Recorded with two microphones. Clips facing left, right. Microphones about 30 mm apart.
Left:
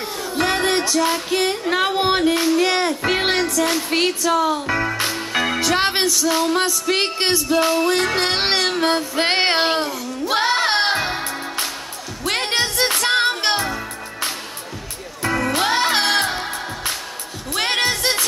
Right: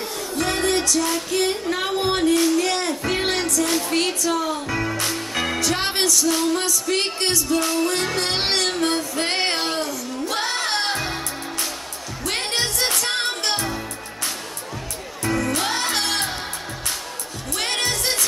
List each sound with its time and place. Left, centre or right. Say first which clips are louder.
0.4 s music: left 3 dB; left
3.9 s speech: left 3 dB; left
5.9 s music: left 2 dB; left
8.4 s child singing: left 3 dB; centre
12.3 s music: left 4 dB; left
15.2 s music: left 3 dB; left